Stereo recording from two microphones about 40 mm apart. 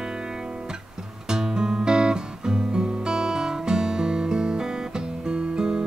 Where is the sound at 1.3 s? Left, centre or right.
Centre.